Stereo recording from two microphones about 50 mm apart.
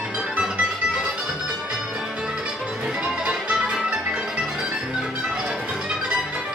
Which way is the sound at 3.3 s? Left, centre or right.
Centre.